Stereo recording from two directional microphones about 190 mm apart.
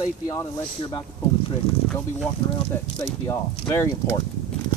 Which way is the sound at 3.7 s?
15° left (ahead or behind).